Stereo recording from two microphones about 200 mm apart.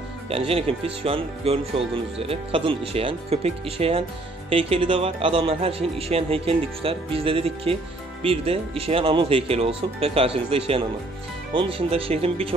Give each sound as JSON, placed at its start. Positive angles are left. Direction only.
{"t": 0.3, "sound": "speech", "side_deg": -30}